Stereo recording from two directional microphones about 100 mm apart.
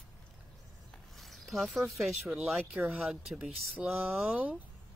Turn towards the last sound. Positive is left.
turn(degrees=-10)  # may be behind; listen again after turning